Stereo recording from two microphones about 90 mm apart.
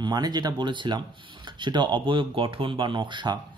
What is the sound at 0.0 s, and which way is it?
A man's voice, 50° right (ahead or behind).